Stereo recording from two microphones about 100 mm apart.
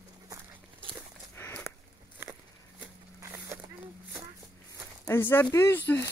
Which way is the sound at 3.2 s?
30° right (ahead or behind).